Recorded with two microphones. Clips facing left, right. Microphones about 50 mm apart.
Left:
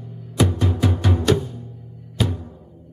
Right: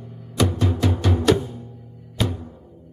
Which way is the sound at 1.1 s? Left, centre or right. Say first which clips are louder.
Right 1 dB; centre.